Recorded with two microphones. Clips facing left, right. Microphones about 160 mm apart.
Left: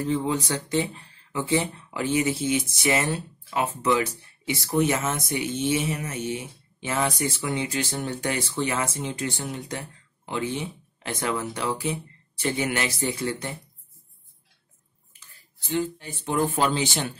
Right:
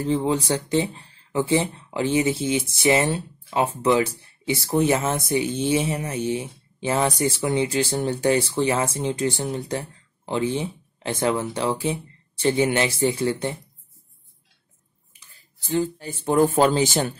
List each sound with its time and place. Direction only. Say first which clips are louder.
0.0 s speech: right 3 dB; 30° right (ahead or behind)
15.6 s speech: right 3 dB; 35° right (ahead or behind)